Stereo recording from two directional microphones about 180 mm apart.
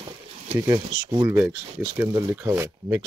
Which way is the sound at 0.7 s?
25° right (ahead or behind).